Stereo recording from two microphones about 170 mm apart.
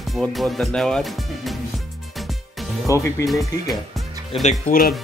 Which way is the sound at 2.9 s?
15° left (ahead or behind).